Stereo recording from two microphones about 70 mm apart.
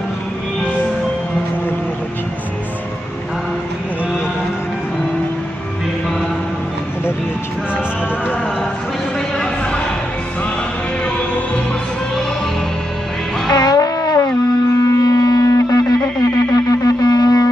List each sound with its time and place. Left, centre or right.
13.5 s music: left
14.9 s wind instrument: left
16.2 s music: left